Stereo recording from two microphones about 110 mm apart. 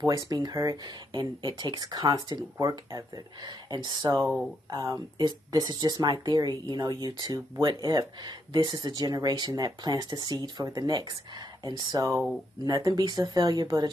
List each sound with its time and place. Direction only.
0.0 s speech: 35° right (ahead or behind)
4.2 s speech: centre (ahead or behind)
4.6 s speech: 30° right (ahead or behind)